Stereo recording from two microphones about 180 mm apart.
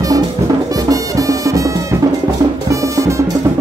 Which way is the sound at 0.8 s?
20° right (ahead or behind).